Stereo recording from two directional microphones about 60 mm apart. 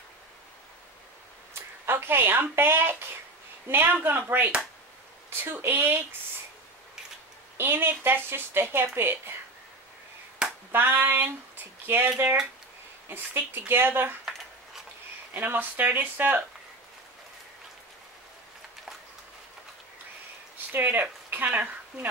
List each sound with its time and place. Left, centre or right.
1.5 s a sound: right
3.6 s speech: right
7.5 s speech: right
10.7 s speech: right
13.1 s speech: right
15.3 s speech: right
20.7 s speech: right